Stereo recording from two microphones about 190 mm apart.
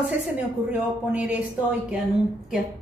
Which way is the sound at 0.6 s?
5° right (ahead or behind).